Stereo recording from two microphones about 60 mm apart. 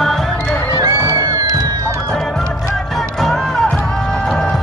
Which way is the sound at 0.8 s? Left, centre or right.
Right.